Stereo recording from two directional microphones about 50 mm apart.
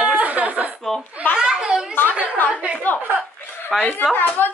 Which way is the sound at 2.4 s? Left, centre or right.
Left.